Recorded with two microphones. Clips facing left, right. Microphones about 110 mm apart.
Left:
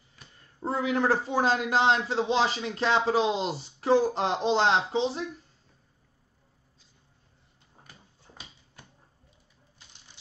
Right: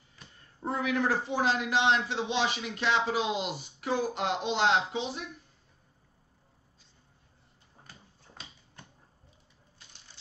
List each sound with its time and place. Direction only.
0.7 s a man's voice: 30° left (ahead or behind)